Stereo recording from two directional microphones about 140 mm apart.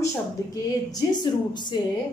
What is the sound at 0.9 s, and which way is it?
Speech, 30° left (ahead or behind).